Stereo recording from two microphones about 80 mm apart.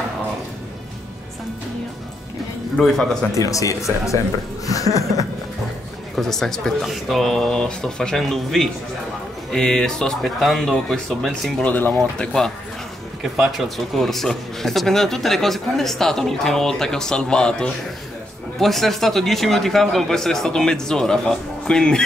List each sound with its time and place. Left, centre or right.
2.7 s speech: centre
3.3 s speech: left
6.1 s speech: centre
11.6 s speech: left
12.2 s speech: centre